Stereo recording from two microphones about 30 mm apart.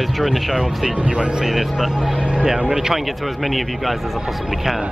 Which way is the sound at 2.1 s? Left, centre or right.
Right.